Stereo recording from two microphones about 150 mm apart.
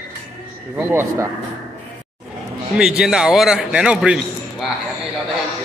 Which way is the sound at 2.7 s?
5° right (ahead or behind).